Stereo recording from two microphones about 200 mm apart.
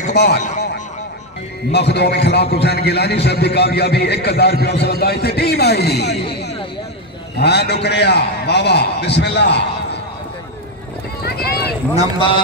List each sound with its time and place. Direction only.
0.1 s a man's voice: 55° left (ahead or behind)
11.2 s run: 50° left (ahead or behind)